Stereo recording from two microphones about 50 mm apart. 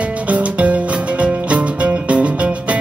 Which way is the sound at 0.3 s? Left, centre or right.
Right.